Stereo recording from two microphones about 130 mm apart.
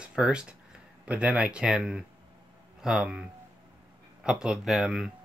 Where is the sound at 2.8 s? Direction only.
5° right (ahead or behind).